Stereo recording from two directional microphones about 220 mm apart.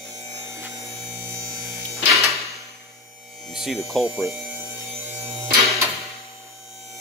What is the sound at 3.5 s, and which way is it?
Hum, centre (ahead or behind).